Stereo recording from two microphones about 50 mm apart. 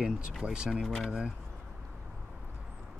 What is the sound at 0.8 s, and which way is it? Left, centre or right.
Speech, centre.